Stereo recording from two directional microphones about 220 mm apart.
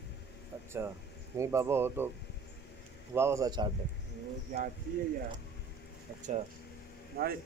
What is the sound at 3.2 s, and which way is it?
Speech, 15° right (ahead or behind).